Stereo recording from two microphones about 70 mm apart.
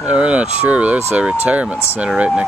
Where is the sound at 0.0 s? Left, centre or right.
Centre.